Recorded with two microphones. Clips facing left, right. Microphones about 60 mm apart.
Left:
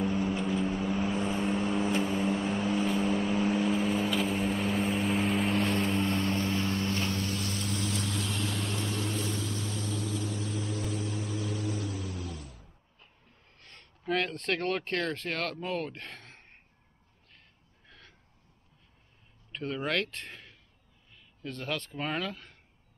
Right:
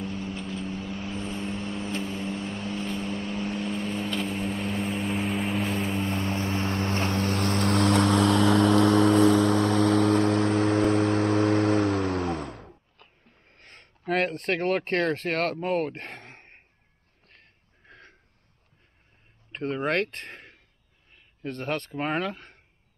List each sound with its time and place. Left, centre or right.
0.0 s vehicle: centre; by 13.1 s right
13.5 s a sound: right
14.6 s speech: right
17.3 s a sound: right
19.5 s speech: right
21.9 s speech: right
22.2 s speech: right